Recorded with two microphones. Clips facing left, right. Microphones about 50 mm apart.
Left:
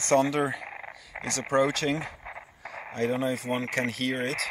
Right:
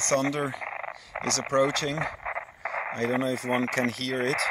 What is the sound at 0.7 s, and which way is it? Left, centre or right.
Frog, right.